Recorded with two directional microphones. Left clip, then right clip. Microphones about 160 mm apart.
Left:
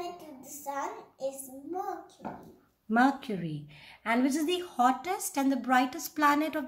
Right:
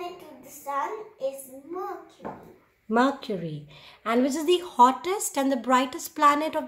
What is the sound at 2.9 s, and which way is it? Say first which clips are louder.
A woman's voice: right 3 dB; 20° right (ahead or behind).